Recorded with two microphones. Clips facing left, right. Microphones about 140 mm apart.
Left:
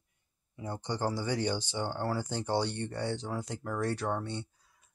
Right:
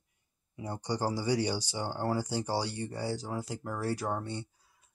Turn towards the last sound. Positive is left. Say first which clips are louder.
# left 1 dB
turn(degrees=-5)  # may be behind; listen again after turning